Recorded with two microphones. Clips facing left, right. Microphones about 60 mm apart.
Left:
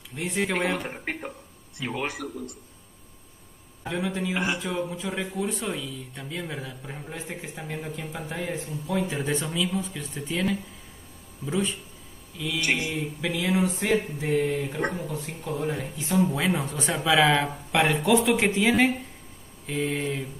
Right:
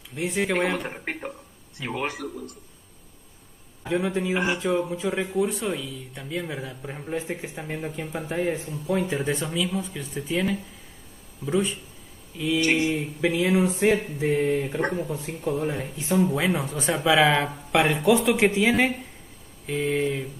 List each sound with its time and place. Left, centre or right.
0.1 s speech: centre
2.0 s a man's voice: right
4.0 s mantra: right
4.7 s speech: centre
7.6 s mantra: right
9.1 s speech: centre
12.4 s mantra: right
15.7 s speech: centre